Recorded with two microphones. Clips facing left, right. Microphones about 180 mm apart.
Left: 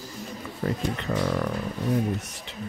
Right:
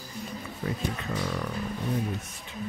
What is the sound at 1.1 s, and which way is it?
Speech, 55° left (ahead or behind).